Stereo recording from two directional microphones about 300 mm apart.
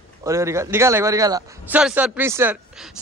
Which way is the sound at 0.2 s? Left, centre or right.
Centre.